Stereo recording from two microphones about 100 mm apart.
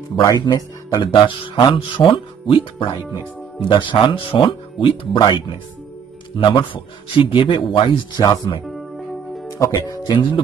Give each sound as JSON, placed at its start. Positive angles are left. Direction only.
{"t": 0.2, "sound": "speech", "side_deg": 35}
{"t": 1.5, "sound": "speech", "side_deg": 50}
{"t": 3.1, "sound": "speech", "side_deg": 55}
{"t": 9.7, "sound": "speech", "side_deg": 45}